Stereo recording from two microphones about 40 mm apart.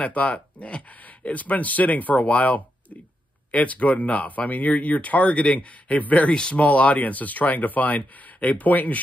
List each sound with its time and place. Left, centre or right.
0.0 s speech: left